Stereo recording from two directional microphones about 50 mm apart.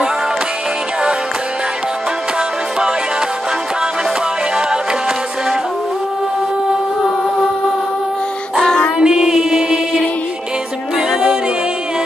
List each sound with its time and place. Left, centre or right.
4.6 s music: centre
8.6 s music: centre
9.0 s music: centre
11.0 s music: centre